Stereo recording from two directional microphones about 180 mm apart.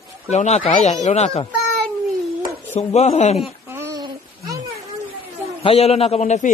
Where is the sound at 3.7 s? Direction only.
15° right (ahead or behind).